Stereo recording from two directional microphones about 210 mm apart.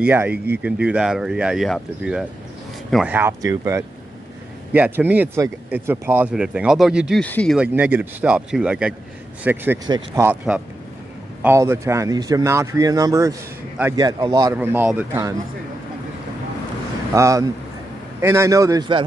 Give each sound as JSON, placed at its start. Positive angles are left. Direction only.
{"t": 0.0, "sound": "speech", "side_deg": -10}
{"t": 7.5, "sound": "speech", "side_deg": -5}
{"t": 17.1, "sound": "speech", "side_deg": -15}